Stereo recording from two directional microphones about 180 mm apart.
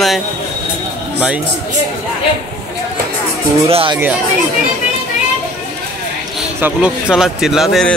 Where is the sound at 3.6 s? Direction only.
30° right (ahead or behind).